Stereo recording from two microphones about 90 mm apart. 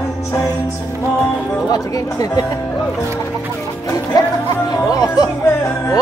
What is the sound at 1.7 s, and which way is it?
Speech, 45° left (ahead or behind).